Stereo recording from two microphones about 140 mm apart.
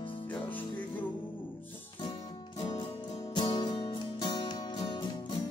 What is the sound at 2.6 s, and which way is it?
Music, 35° left (ahead or behind).